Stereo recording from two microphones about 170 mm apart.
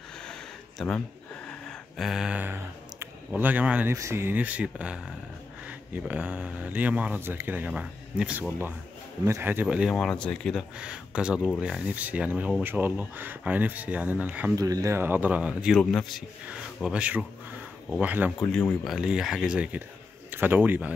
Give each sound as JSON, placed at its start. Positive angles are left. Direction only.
{"t": 0.3, "sound": "a sound", "side_deg": 5}
{"t": 3.9, "sound": "speech", "side_deg": -15}
{"t": 14.5, "sound": "speech", "side_deg": -20}
{"t": 18.4, "sound": "speech", "side_deg": 5}